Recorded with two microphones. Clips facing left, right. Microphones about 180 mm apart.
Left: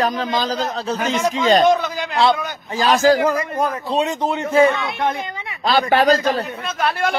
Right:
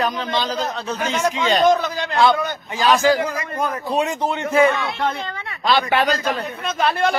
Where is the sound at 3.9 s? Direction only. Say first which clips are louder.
Right 1 dB; 25° left (ahead or behind).